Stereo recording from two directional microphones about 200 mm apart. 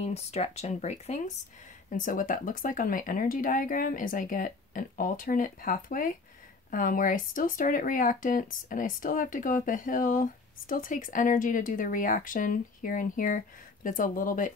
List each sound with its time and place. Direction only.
0.0 s speech: 30° left (ahead or behind)